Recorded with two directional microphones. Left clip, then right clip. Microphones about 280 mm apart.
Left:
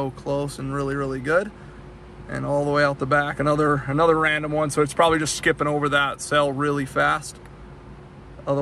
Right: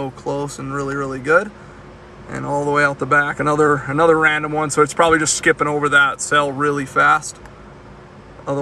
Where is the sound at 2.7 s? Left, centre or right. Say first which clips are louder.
Right 6 dB; centre.